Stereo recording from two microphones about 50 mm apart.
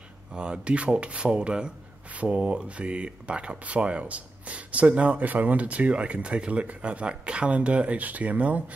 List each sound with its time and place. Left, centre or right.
0.3 s speech: centre